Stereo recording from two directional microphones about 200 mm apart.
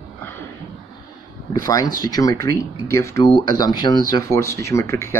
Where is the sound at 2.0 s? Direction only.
15° left (ahead or behind).